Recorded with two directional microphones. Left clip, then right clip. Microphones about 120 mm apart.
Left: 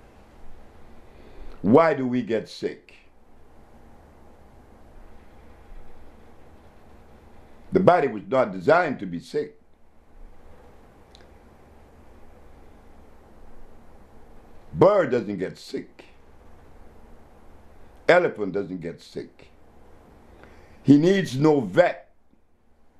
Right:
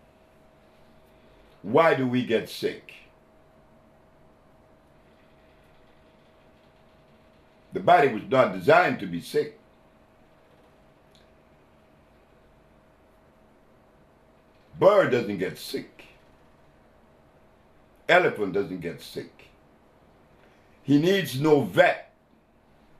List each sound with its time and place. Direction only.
1.7 s speech: 35° left (ahead or behind)
7.7 s speech: 30° left (ahead or behind)
14.8 s speech: 35° left (ahead or behind)
18.0 s speech: 30° left (ahead or behind)
20.8 s speech: 35° left (ahead or behind)